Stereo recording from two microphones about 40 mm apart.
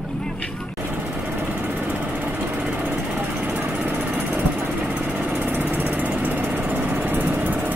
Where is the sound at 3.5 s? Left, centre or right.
Right.